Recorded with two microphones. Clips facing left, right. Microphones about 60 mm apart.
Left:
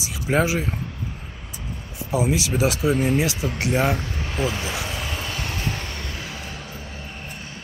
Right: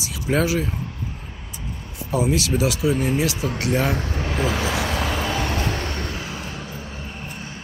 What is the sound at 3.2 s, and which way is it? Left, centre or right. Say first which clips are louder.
Speech: even; left.